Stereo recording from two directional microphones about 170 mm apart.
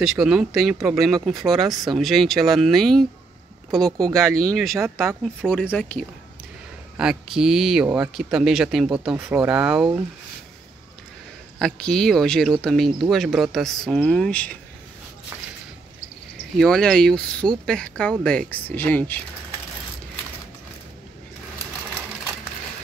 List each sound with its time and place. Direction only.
0.0 s speech: centre (ahead or behind)
7.0 s speech: 5° right (ahead or behind)
11.5 s speech: 5° left (ahead or behind)
16.5 s speech: 5° left (ahead or behind)